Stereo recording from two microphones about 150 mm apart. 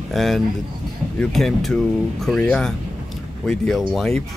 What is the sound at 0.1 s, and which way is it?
Speech, centre (ahead or behind).